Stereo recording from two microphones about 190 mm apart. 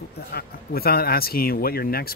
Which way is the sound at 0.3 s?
55° left (ahead or behind).